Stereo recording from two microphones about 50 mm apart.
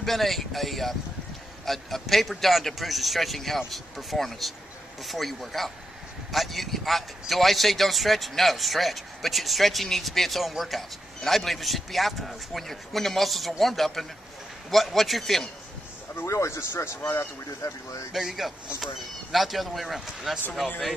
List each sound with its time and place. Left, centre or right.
0.0 s speech: centre
16.3 s speech: left
18.1 s speech: centre